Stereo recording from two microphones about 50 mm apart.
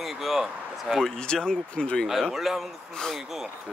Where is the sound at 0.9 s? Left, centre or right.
Centre.